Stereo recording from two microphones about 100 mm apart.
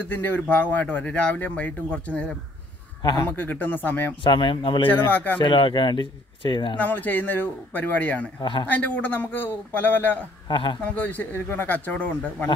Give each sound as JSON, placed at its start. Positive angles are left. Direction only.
{"t": 0.1, "sound": "speech", "side_deg": 20}
{"t": 3.0, "sound": "a man's voice", "side_deg": 45}
{"t": 3.3, "sound": "speech", "side_deg": 15}
{"t": 4.2, "sound": "a man's voice", "side_deg": 55}
{"t": 4.8, "sound": "speech", "side_deg": 20}
{"t": 5.4, "sound": "a man's voice", "side_deg": 55}
{"t": 6.8, "sound": "a man's voice", "side_deg": 20}
{"t": 8.4, "sound": "a man's voice", "side_deg": 50}
{"t": 8.6, "sound": "a man's voice", "side_deg": 15}
{"t": 10.5, "sound": "a man's voice", "side_deg": 55}
{"t": 11.0, "sound": "speech", "side_deg": 20}